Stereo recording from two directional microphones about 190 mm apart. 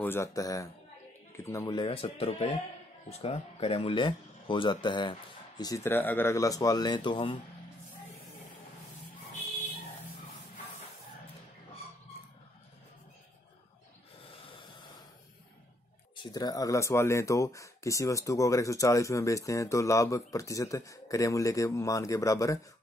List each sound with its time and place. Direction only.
0.0 s speech: 15° left (ahead or behind)
16.2 s speech: 20° left (ahead or behind)